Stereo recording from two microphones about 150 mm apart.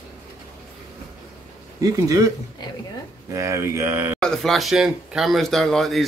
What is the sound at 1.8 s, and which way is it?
Speech, 25° right (ahead or behind).